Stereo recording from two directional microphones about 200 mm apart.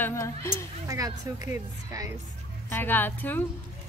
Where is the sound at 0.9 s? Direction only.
15° right (ahead or behind).